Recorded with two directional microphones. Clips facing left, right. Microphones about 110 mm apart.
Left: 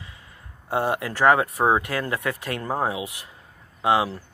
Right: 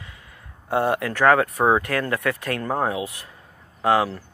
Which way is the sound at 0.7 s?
25° left (ahead or behind).